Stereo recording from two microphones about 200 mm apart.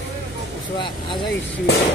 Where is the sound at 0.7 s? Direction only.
25° left (ahead or behind).